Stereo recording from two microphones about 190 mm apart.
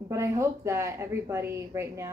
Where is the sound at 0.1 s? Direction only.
15° right (ahead or behind).